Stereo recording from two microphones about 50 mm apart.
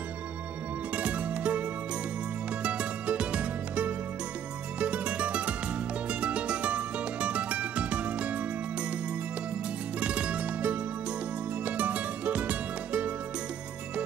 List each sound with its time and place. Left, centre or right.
0.9 s music: right
2.6 s music: right
9.9 s music: right